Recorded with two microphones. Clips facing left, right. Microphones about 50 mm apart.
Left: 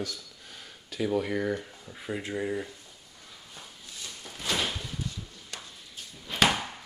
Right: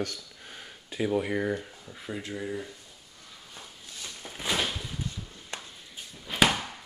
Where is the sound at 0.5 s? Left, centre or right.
Right.